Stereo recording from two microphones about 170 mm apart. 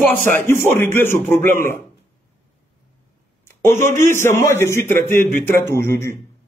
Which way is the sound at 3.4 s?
15° left (ahead or behind).